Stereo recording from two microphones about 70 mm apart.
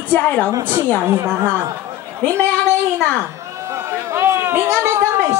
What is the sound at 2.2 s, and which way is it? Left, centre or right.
Speech, left.